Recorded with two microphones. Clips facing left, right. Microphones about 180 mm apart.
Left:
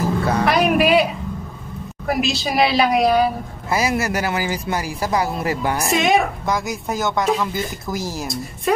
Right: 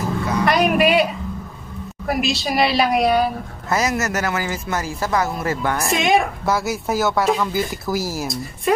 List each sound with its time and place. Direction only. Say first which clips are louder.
0.5 s speech: even; centre (ahead or behind)
2.0 s speech: even; centre (ahead or behind)
3.6 s speech: even; 10° left (ahead or behind)
5.9 s speech: left 1 dB; centre (ahead or behind)